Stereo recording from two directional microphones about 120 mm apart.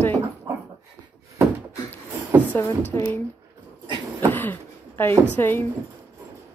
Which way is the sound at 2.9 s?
15° left (ahead or behind).